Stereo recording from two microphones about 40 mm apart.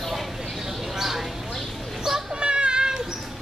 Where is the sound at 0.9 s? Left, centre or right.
Centre.